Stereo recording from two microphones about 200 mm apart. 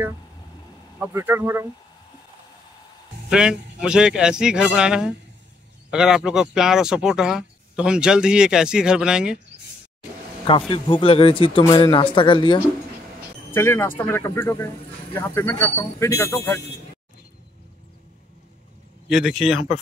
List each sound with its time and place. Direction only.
0.9 s speech: 10° right (ahead or behind)
3.3 s speech: 5° right (ahead or behind)
10.7 s speech: 25° left (ahead or behind)
13.5 s speech: 10° left (ahead or behind)
19.0 s speech: centre (ahead or behind)